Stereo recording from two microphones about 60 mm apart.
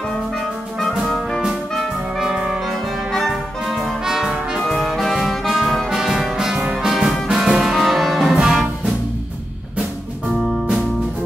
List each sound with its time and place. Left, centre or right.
1.8 s trumpet: centre
2.6 s music: centre
3.6 s brass instrument: centre
6.9 s music: centre
7.7 s music: centre